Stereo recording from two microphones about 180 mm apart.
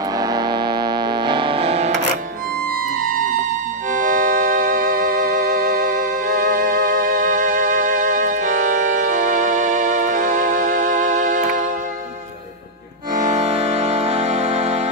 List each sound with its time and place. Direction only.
0.1 s music: 20° right (ahead or behind)
3.1 s music: 50° right (ahead or behind)
13.1 s music: 45° right (ahead or behind)